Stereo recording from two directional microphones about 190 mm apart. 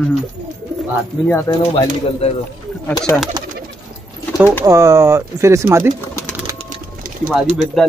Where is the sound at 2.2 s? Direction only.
30° left (ahead or behind).